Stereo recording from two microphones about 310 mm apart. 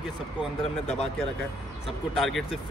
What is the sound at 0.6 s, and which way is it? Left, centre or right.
Speech, centre.